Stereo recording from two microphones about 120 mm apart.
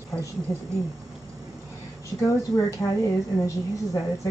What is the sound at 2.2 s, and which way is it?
A woman's voice, 25° left (ahead or behind).